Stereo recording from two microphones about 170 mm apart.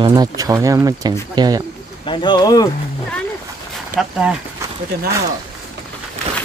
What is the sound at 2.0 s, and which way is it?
Speech, 30° left (ahead or behind).